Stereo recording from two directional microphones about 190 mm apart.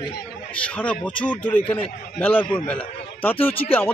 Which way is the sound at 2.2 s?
10° left (ahead or behind).